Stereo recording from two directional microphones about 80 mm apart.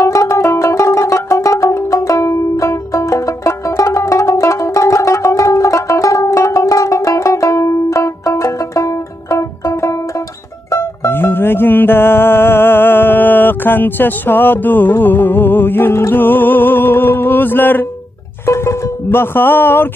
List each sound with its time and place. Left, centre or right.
0.0 s music: left
18.4 s music: left